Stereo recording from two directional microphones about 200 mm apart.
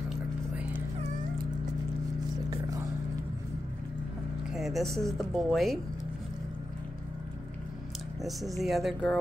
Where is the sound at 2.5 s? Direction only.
15° right (ahead or behind).